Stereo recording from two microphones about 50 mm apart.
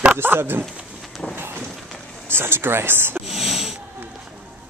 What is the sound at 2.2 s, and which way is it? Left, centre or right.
Speech, right.